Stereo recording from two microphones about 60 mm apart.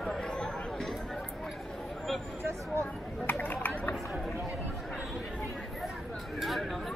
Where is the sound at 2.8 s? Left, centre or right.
Left.